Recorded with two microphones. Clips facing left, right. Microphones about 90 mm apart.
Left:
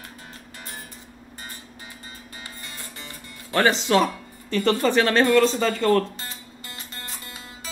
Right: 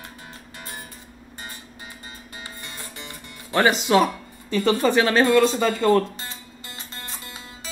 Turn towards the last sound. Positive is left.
turn(degrees=-15)  # may be behind; listen again after turning